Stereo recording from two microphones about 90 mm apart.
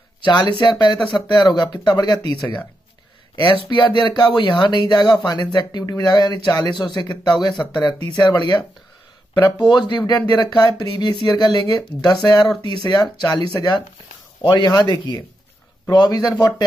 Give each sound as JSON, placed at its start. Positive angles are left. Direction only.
{"t": 0.2, "sound": "speech", "side_deg": 55}
{"t": 3.7, "sound": "speech", "side_deg": 60}